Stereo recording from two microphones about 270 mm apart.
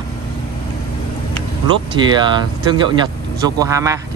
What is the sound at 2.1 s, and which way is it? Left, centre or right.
Speech, centre.